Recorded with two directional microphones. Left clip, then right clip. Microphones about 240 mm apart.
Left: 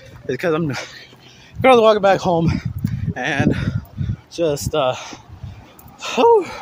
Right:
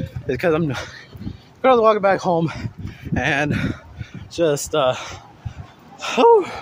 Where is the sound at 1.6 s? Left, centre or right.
Left.